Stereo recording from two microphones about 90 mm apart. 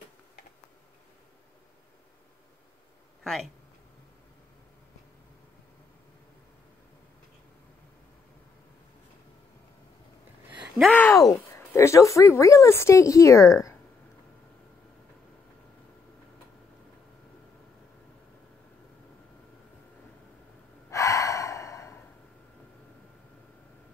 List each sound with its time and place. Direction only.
10.9 s speech: 20° left (ahead or behind)
11.1 s a woman's voice: 35° left (ahead or behind)
20.9 s gasp: 35° left (ahead or behind)